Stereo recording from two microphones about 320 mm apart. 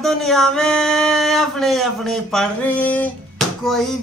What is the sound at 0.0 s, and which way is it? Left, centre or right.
Speech, centre.